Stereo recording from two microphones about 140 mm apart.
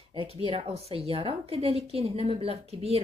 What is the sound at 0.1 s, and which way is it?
Speech, 40° right (ahead or behind).